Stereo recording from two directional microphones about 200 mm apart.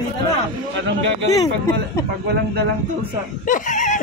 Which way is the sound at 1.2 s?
15° left (ahead or behind).